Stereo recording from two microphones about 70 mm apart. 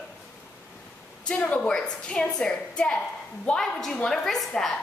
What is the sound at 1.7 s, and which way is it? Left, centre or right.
A woman's voice, centre.